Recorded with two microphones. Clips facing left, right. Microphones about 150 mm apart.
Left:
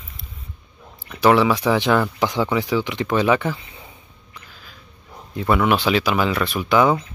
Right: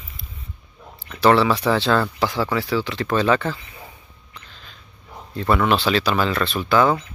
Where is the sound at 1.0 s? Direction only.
15° left (ahead or behind).